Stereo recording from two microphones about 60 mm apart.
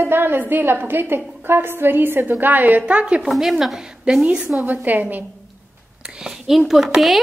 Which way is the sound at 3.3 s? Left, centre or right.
Centre.